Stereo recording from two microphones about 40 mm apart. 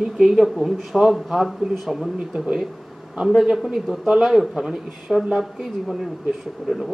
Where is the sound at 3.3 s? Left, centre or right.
Centre.